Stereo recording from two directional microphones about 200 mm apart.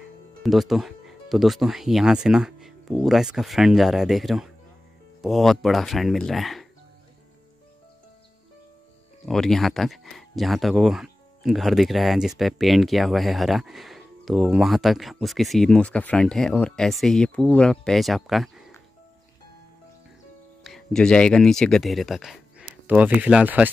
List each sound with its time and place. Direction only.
0.4 s speech: centre (ahead or behind)
9.2 s speech: centre (ahead or behind)
20.6 s speech: centre (ahead or behind)